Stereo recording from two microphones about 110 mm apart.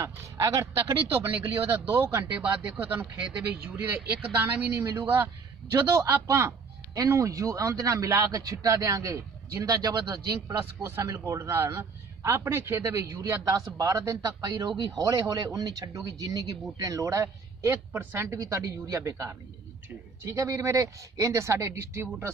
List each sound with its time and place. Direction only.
0.0 s a man's voice: 25° right (ahead or behind)
20.3 s a man's voice: 30° right (ahead or behind)